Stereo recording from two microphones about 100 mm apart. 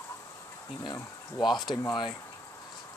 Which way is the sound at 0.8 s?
45° left (ahead or behind).